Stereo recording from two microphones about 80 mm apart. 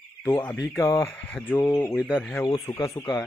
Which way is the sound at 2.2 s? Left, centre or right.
Left.